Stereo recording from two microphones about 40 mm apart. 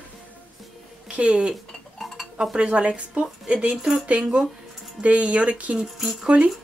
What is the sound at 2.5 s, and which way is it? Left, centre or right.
Speech, right.